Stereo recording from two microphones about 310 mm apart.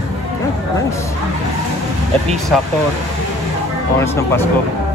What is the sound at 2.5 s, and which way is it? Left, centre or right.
Speech, centre.